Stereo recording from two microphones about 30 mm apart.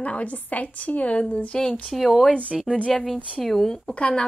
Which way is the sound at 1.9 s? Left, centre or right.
Centre.